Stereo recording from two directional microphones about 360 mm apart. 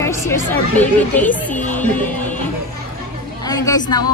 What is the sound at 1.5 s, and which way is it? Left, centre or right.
Music, left.